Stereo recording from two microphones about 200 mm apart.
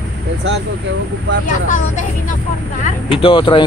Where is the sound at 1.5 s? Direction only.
40° left (ahead or behind).